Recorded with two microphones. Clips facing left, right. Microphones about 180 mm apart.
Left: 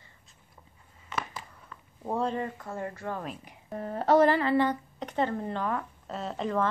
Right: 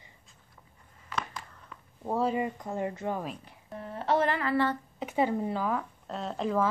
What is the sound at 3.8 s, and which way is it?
Speech, 40° left (ahead or behind).